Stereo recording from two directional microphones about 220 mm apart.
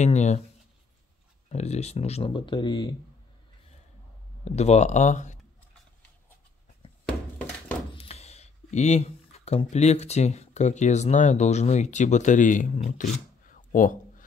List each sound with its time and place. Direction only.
0.0 s speech: 30° left (ahead or behind)
1.5 s speech: 30° left (ahead or behind)
4.5 s speech: 30° left (ahead or behind)
7.9 s speech: 25° left (ahead or behind)